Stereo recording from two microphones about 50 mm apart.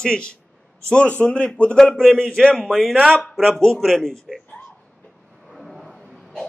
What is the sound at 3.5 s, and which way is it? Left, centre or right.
Speech, centre.